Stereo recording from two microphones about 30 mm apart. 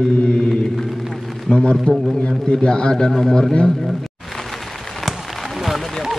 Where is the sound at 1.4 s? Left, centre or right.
Left.